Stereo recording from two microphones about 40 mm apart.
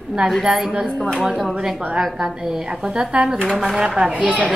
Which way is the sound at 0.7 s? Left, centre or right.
Right.